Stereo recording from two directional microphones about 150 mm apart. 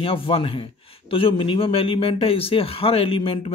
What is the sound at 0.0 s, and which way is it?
Speech, 40° left (ahead or behind).